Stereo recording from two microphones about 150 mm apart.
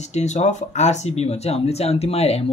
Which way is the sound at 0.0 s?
50° left (ahead or behind).